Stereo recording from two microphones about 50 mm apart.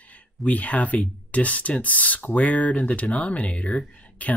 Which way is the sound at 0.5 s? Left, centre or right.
Left.